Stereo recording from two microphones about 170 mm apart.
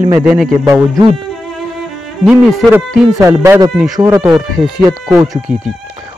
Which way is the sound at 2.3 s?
10° right (ahead or behind).